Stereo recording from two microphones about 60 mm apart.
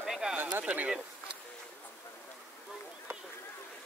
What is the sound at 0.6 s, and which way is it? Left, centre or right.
Speech, right.